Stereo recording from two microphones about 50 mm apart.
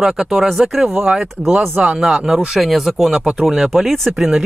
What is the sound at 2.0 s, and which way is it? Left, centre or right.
Speech, centre.